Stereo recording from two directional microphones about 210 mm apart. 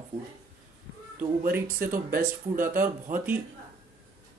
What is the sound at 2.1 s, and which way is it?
Speech, 45° right (ahead or behind).